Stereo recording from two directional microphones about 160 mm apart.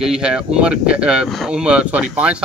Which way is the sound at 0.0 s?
5° right (ahead or behind).